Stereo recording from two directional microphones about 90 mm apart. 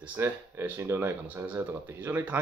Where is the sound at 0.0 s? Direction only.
25° right (ahead or behind).